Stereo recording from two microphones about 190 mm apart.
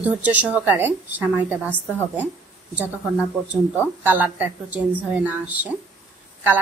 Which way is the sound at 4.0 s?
10° right (ahead or behind).